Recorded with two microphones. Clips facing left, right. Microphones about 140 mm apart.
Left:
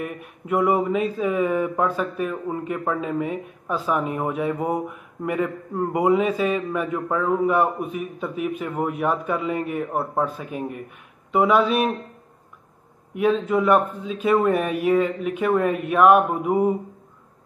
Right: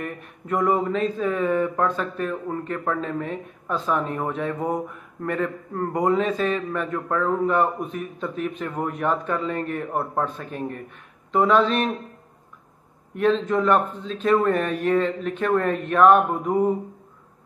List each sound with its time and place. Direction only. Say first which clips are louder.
0.0 s speech: left 2 dB; 10° left (ahead or behind)
13.1 s speech: left 1 dB; 10° left (ahead or behind)